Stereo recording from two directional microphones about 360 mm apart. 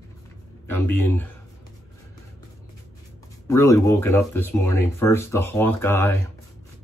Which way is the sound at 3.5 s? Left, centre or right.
Centre.